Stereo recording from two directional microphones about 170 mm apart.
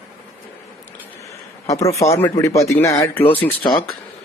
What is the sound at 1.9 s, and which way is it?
Speech, 15° left (ahead or behind).